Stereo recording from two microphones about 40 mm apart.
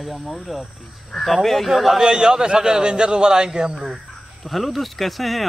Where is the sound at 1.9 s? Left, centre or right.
Centre.